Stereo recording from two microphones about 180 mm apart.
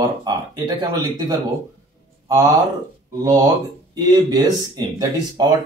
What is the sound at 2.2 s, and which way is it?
Speech, 20° right (ahead or behind).